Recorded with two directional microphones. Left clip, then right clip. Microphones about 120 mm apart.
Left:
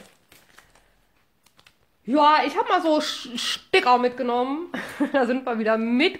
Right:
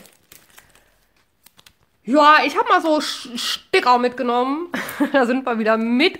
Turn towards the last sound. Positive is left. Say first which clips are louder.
# right 4 dB
turn(degrees=-25)  # may be behind; listen again after turning